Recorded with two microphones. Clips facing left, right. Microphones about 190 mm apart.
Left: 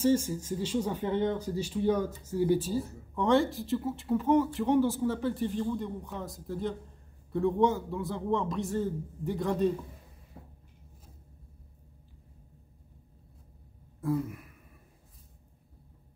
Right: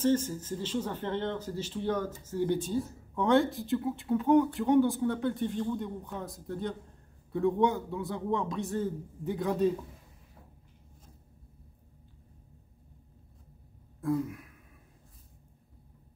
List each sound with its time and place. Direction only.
0.0 s speech: 10° left (ahead or behind)
14.0 s speech: centre (ahead or behind)